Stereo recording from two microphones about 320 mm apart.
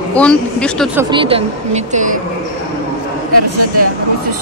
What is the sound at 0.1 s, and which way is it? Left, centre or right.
Speech, centre.